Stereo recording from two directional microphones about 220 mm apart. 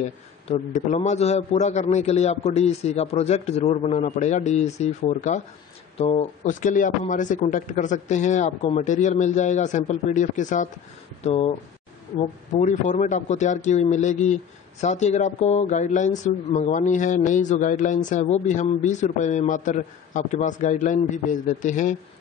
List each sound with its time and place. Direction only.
0.5 s speech: 30° left (ahead or behind)